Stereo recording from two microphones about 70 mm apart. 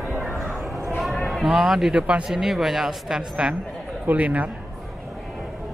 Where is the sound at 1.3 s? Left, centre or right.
Centre.